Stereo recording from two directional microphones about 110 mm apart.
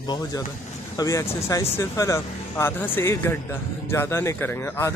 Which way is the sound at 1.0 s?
25° left (ahead or behind).